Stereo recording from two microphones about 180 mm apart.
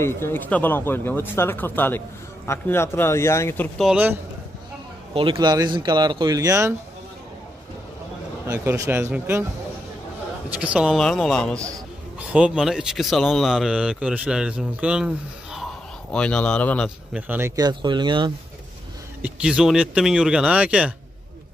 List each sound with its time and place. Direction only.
0.0 s speech: 15° left (ahead or behind)
3.8 s speech: 10° right (ahead or behind)
5.1 s speech: 25° right (ahead or behind)
8.5 s speech: 15° right (ahead or behind)
10.5 s speech: 5° right (ahead or behind)
12.2 s speech: 5° right (ahead or behind)
17.3 s speech: 15° right (ahead or behind)
17.6 s speech: 25° right (ahead or behind)
19.2 s speech: 5° right (ahead or behind)